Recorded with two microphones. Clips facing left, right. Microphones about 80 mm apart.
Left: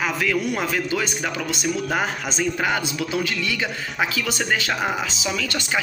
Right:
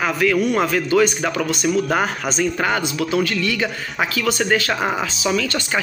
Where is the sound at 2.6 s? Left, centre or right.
Centre.